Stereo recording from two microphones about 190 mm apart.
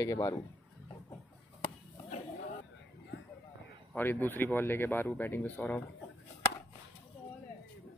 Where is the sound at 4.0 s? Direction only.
10° left (ahead or behind).